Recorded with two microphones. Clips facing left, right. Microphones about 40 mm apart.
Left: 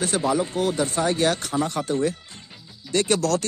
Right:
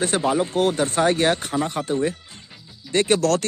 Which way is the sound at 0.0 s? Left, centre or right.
Right.